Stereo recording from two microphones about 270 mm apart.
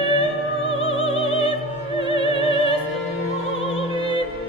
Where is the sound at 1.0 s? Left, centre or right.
Centre.